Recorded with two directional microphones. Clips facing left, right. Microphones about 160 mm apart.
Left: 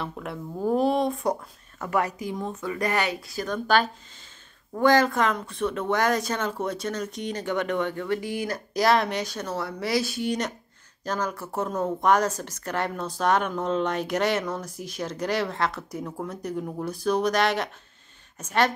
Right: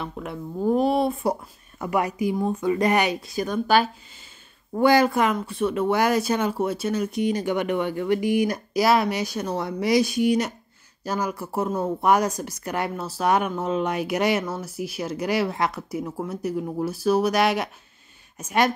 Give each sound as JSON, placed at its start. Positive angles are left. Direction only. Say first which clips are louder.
{"t": 0.0, "sound": "speech", "louder": "right 1 dB", "side_deg": 0}